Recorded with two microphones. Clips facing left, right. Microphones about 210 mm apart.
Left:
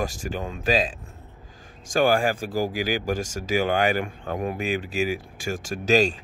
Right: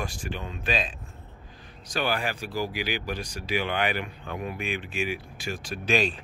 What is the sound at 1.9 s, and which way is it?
Speech, 45° left (ahead or behind).